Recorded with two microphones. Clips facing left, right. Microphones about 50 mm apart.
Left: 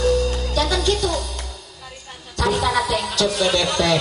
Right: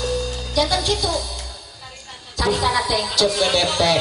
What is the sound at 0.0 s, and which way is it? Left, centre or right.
Music, left.